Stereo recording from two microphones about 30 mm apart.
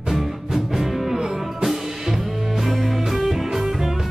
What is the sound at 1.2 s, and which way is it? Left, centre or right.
Music, right.